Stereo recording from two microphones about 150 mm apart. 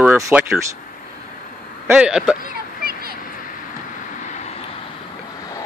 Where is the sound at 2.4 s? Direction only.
90° right.